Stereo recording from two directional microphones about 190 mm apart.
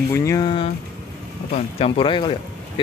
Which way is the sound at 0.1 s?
15° left (ahead or behind).